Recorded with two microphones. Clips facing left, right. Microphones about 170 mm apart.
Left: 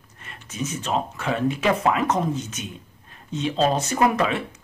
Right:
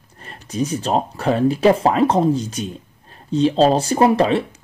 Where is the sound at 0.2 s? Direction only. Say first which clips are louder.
Right 8 dB; 35° right (ahead or behind).